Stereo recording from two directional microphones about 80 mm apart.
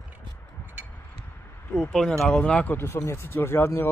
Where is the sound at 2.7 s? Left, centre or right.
Left.